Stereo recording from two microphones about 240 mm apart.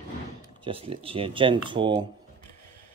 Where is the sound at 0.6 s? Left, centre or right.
Right.